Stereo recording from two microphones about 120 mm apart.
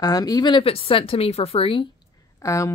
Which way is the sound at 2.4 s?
25° left (ahead or behind).